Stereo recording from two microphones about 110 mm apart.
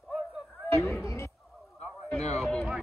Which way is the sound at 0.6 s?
25° left (ahead or behind).